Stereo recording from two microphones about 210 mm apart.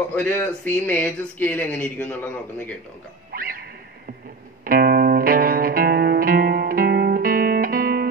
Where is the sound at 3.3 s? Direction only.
45° right (ahead or behind).